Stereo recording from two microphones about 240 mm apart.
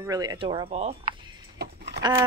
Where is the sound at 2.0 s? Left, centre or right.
Centre.